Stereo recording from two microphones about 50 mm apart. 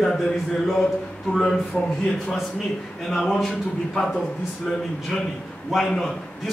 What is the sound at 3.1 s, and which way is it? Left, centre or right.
Speech, centre.